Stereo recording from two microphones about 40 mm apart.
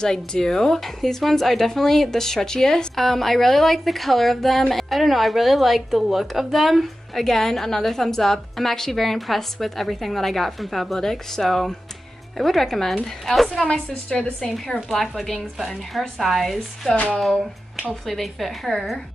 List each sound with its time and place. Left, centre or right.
0.0 s speech: centre
13.7 s a woman's voice: left
14.9 s speech: centre